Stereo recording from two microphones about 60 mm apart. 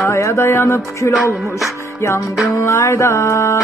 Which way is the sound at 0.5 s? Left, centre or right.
Left.